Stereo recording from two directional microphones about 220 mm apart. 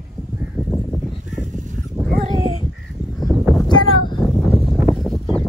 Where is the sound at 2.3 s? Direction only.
25° left (ahead or behind).